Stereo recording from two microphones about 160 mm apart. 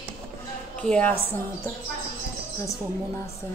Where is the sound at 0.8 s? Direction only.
5° left (ahead or behind).